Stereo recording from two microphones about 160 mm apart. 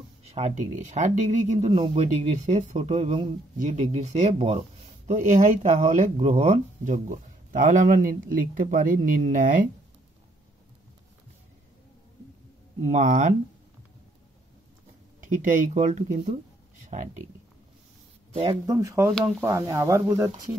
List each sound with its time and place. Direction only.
0.2 s speech: 40° right (ahead or behind)
6.1 s speech: 40° right (ahead or behind); by 9.7 s 55° right (ahead or behind)
12.8 s speech: 50° right (ahead or behind)
15.4 s speech: 55° right (ahead or behind)
18.3 s speech: 35° right (ahead or behind)
18.7 s speech: 20° right (ahead or behind)